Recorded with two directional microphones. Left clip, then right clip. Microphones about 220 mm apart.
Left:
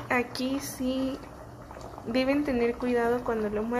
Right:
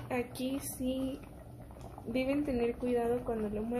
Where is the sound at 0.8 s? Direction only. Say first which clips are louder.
Left 5 dB; 35° left (ahead or behind).